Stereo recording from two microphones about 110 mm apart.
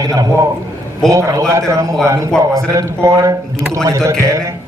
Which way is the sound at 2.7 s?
30° right (ahead or behind).